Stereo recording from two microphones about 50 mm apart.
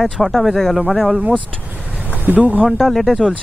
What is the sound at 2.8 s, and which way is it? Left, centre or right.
Speech, centre.